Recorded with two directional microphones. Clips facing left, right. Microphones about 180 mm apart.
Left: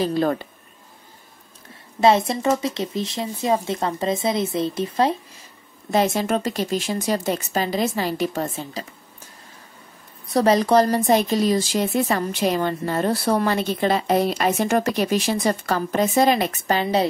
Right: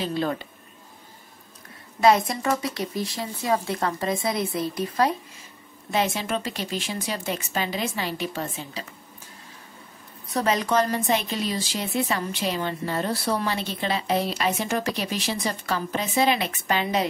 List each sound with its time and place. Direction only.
0.0 s speech: 45° left (ahead or behind)
2.0 s a woman's voice: 25° left (ahead or behind)
5.9 s speech: 40° left (ahead or behind)
10.3 s speech: 35° left (ahead or behind)